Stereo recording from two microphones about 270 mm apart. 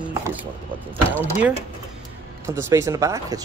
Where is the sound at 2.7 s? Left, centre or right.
Centre.